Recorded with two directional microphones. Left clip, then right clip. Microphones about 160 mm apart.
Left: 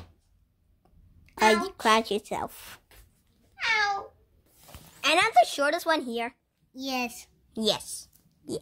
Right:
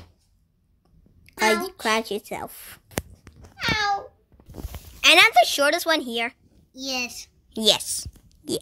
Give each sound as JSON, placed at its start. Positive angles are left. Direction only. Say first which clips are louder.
{"t": 1.2, "sound": "a woman's voice", "louder": "right 1 dB", "side_deg": -10}
{"t": 3.5, "sound": "cat", "louder": "right 2 dB", "side_deg": -60}
{"t": 5.0, "sound": "a woman's voice", "louder": "right 6 dB", "side_deg": -10}
{"t": 6.7, "sound": "a child's voice", "louder": "right 3 dB", "side_deg": 55}
{"t": 7.5, "sound": "speech", "louder": "right 7 dB", "side_deg": -15}